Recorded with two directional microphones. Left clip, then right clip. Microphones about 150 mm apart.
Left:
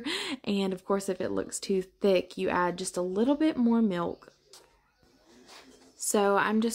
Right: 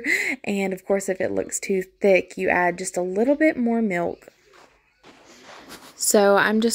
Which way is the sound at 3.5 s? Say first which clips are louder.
Right 4 dB; 10° right (ahead or behind).